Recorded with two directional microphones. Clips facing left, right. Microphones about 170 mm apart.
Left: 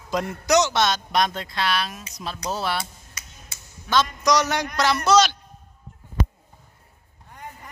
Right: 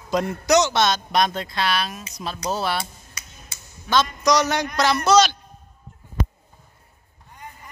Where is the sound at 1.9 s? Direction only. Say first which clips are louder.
Right 2 dB; 35° right (ahead or behind).